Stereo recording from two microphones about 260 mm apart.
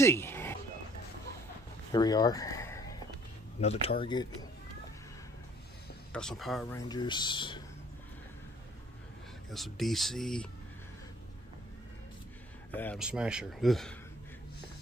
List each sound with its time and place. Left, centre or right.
0.0 s a sound: centre
1.9 s a sound: centre
3.6 s speech: left
6.1 s speech: centre
6.9 s speech: centre
9.5 s speech: centre
12.7 s speech: centre